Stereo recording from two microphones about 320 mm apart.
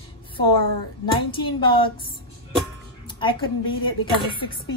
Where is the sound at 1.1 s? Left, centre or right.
Centre.